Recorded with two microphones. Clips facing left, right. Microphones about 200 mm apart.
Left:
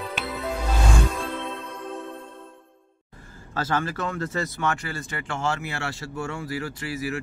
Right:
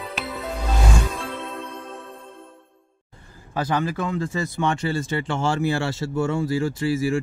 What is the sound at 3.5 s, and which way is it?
Speech, 15° right (ahead or behind).